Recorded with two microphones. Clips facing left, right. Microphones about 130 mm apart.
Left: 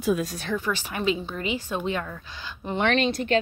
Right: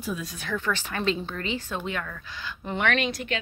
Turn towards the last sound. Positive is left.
turn(degrees=30)  # may be behind; listen again after turning